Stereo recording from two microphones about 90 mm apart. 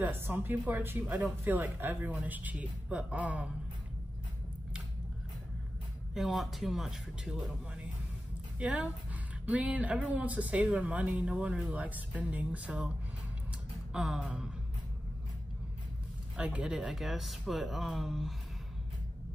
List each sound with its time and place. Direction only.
0.0 s speech: 20° right (ahead or behind)
6.1 s speech: centre (ahead or behind)
13.9 s speech: 5° right (ahead or behind)
16.3 s speech: 10° right (ahead or behind)